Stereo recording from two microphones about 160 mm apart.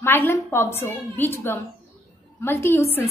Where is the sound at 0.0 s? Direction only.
15° left (ahead or behind).